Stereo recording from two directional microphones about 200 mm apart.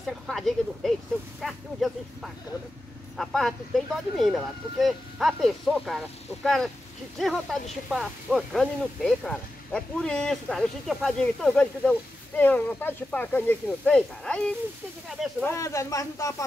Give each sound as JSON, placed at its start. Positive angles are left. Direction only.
{"t": 0.0, "sound": "speech", "side_deg": 0}
{"t": 15.4, "sound": "speech", "side_deg": 15}